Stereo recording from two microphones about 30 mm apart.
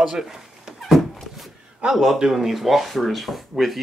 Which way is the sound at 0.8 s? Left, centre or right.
Centre.